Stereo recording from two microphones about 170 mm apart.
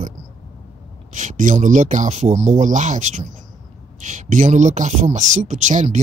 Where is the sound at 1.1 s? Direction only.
45° right (ahead or behind).